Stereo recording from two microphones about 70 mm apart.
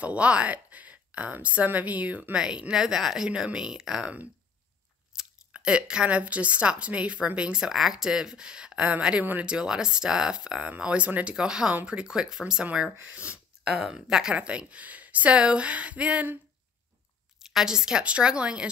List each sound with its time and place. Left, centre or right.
0.0 s speech: centre
5.1 s speech: centre
17.4 s speech: centre